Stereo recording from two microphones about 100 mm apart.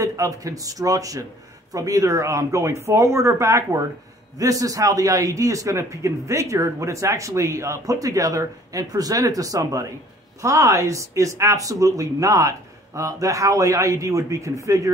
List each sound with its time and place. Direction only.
0.0 s a man's voice: 35° right (ahead or behind)